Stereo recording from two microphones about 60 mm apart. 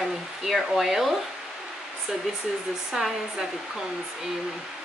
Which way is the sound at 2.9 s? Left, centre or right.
Centre.